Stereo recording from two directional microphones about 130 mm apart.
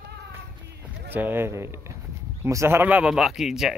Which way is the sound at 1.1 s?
15° right (ahead or behind).